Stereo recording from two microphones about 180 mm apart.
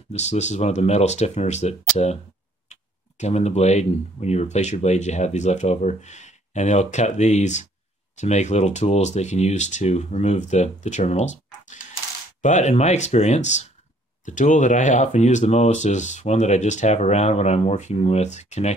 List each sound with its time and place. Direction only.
0.1 s speech: 40° left (ahead or behind)